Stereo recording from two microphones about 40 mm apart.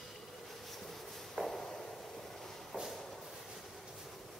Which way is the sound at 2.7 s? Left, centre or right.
Centre.